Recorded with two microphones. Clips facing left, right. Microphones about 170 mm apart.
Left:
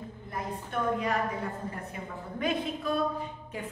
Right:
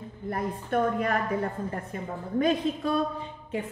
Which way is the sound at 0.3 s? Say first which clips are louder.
Right 7 dB; 55° right (ahead or behind).